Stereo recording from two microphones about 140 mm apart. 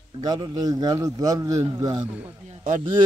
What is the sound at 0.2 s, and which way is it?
A man's voice, 30° right (ahead or behind).